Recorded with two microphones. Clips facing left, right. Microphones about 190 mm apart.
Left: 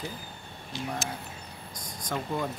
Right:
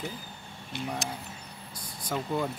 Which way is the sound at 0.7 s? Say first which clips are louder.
Even; 60° right (ahead or behind).